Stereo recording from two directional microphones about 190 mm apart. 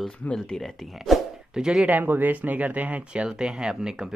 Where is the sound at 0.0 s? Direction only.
5° left (ahead or behind).